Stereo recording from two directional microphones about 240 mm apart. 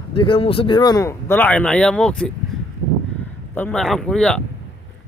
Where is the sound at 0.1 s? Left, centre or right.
Left; by 2.3 s centre.